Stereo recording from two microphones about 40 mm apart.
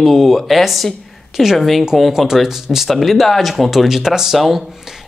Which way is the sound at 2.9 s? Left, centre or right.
Centre.